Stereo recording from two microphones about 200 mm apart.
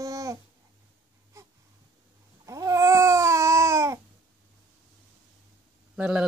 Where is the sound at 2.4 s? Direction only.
15° right (ahead or behind).